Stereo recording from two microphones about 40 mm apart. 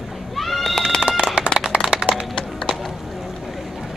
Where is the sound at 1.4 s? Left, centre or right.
Right.